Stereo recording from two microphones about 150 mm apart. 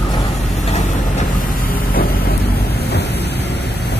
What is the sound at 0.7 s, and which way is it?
Vehicle, 50° left (ahead or behind).